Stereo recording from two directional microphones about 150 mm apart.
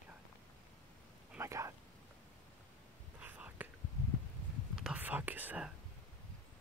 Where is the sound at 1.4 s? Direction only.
20° right (ahead or behind).